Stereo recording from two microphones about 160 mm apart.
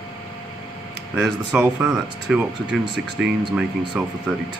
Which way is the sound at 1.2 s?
5° right (ahead or behind).